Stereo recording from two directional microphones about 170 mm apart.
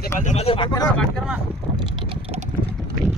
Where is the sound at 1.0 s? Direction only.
Centre (ahead or behind).